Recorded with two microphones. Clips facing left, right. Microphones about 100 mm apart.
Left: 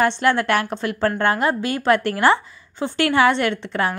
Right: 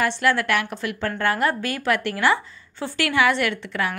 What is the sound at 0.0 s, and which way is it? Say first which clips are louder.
A woman's voice: left 3 dB; 30° left (ahead or behind).